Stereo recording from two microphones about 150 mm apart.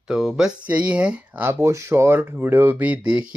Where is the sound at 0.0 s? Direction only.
5° right (ahead or behind).